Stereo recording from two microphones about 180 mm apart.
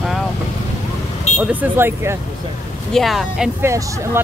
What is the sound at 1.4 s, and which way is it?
Speech, 10° right (ahead or behind).